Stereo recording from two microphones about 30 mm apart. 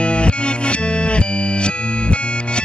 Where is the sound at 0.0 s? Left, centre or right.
Left.